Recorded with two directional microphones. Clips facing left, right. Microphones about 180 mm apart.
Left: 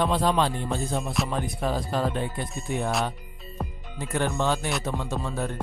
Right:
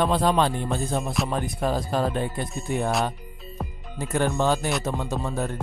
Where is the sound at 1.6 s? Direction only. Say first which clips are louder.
Right 3 dB; 45° right (ahead or behind).